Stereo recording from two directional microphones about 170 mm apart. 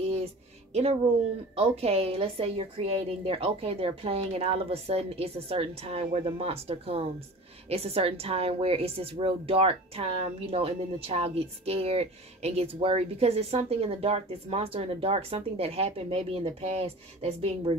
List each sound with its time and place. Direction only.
1.6 s a woman's voice: 35° right (ahead or behind)